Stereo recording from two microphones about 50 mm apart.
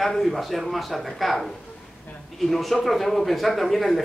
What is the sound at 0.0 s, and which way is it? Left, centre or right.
A man's voice, centre.